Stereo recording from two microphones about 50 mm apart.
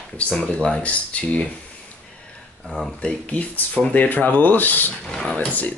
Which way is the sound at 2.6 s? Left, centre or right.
Centre.